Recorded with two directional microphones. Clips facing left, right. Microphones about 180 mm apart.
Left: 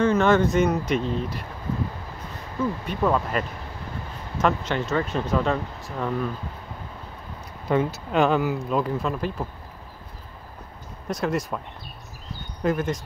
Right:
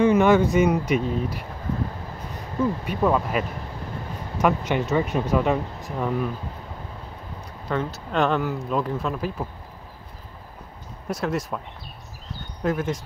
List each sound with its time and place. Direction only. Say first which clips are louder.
0.0 s speech: right 2 dB; 15° right (ahead or behind)
2.9 s speech: left 1 dB; 10° right (ahead or behind)
7.6 s speech: left 4 dB; 10° left (ahead or behind)
11.1 s speech: left 1 dB; 5° right (ahead or behind)
12.6 s speech: left 1 dB; 5° right (ahead or behind)